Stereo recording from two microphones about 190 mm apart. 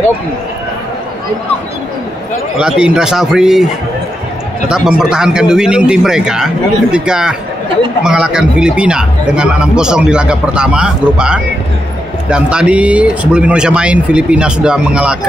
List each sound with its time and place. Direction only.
2.6 s speech: 5° right (ahead or behind)
4.6 s speech: 5° right (ahead or behind)